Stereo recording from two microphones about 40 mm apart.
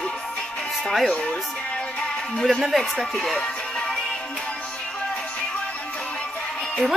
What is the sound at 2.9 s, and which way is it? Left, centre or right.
Speech, centre.